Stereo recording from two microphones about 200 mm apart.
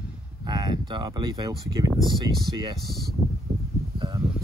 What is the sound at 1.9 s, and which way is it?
Speech, 15° left (ahead or behind).